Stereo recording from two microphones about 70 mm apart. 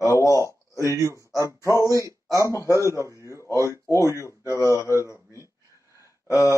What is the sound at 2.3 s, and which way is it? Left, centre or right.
Mantra, left.